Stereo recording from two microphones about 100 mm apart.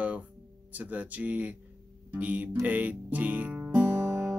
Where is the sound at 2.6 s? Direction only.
15° right (ahead or behind).